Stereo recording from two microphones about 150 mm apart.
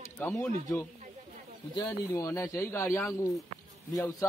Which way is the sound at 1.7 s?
20° left (ahead or behind).